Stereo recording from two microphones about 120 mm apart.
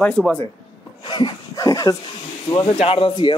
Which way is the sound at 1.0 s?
40° left (ahead or behind).